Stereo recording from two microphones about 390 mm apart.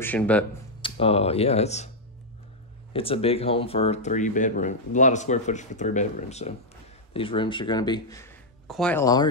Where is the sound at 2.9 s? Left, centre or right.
Centre.